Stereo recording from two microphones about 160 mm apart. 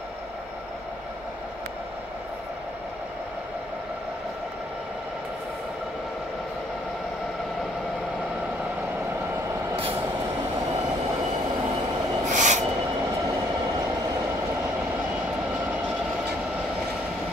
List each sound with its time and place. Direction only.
12.3 s snort: 50° right (ahead or behind)